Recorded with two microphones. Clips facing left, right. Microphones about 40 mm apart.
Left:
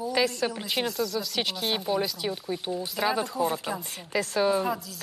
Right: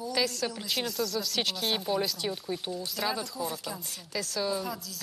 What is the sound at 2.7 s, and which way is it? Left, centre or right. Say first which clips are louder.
Speech: left 8 dB; left.